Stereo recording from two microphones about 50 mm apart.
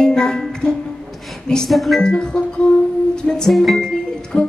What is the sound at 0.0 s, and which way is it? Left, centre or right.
Music, centre.